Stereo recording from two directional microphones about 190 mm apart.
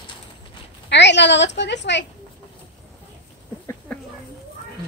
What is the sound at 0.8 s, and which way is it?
A woman's voice, 65° left (ahead or behind).